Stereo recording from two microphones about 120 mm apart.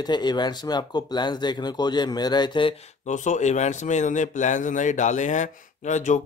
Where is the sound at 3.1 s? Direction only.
85° left.